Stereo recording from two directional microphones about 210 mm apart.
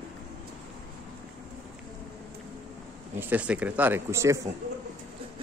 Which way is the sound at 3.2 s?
5° right (ahead or behind).